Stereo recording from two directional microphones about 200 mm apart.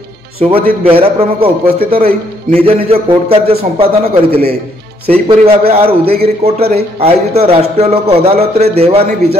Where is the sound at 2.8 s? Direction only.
30° right (ahead or behind).